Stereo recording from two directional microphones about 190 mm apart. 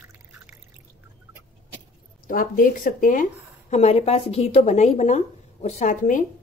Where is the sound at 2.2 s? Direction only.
50° left (ahead or behind).